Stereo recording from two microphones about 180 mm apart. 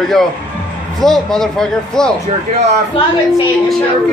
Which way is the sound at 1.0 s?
Centre (ahead or behind).